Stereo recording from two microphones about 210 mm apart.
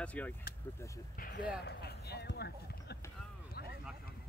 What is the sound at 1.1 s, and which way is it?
Speech, 40° left (ahead or behind).